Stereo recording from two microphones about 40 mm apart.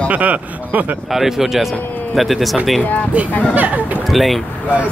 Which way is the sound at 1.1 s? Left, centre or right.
Centre.